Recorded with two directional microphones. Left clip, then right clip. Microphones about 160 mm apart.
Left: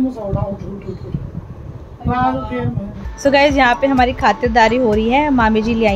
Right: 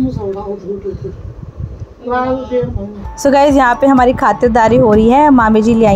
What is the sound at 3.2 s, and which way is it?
A woman's voice, 30° right (ahead or behind).